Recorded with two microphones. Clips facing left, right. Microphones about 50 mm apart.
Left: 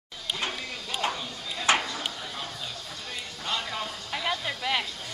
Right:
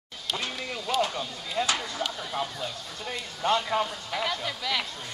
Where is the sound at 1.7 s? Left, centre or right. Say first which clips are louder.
Left 5 dB; left.